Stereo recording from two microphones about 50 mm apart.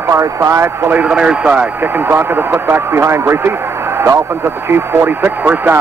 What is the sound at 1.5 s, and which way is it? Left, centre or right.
A man's voice, right.